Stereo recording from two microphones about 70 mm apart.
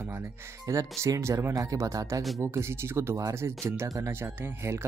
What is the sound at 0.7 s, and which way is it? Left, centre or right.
Speech, right.